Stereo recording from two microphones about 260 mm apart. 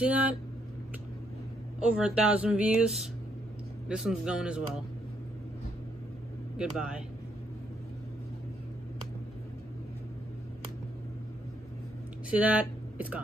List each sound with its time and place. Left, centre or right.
0.0 s speech: centre
1.8 s speech: centre
6.5 s speech: centre
12.3 s speech: centre